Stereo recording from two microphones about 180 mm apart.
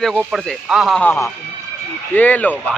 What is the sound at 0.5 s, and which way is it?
A man's voice, centre (ahead or behind).